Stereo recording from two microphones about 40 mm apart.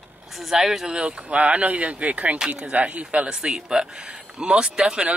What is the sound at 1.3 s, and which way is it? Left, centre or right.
Speech, right.